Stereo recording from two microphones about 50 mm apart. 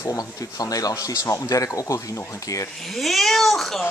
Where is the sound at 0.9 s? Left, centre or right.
Left.